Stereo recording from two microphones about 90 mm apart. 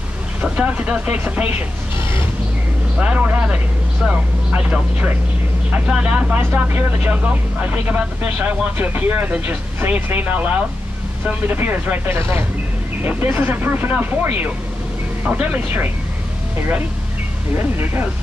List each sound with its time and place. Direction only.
0.4 s speech: 15° right (ahead or behind)
3.0 s speech: 15° right (ahead or behind)
17.6 s speech: 25° right (ahead or behind)